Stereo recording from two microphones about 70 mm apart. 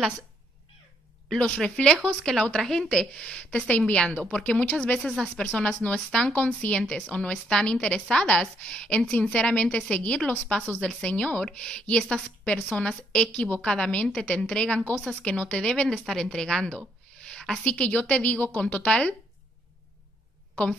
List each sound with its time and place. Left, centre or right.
1.3 s a woman's voice: centre